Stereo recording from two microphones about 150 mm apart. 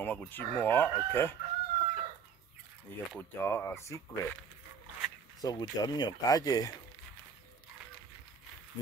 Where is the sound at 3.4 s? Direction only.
15° left (ahead or behind).